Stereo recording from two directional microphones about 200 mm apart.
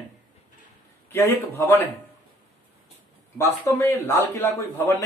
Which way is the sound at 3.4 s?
10° left (ahead or behind).